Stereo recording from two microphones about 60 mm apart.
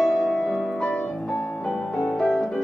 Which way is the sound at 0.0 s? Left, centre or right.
Centre.